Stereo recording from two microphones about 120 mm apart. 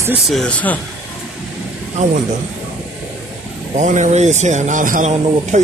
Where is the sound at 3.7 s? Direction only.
90° right.